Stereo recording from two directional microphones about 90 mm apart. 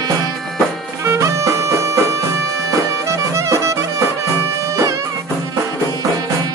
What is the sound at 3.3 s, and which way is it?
Music, 35° right (ahead or behind).